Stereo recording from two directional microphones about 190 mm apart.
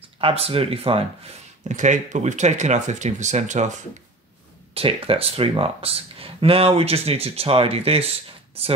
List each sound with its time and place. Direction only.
0.2 s speech: 30° right (ahead or behind)
4.7 s speech: 30° right (ahead or behind)